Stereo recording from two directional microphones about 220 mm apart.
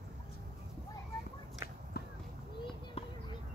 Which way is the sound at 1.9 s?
45° left (ahead or behind).